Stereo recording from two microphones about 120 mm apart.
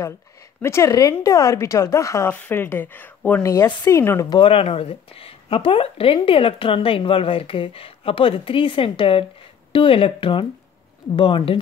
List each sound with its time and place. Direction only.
0.6 s speech: 20° left (ahead or behind)
3.4 s speech: 25° left (ahead or behind)
4.3 s speech: 45° left (ahead or behind)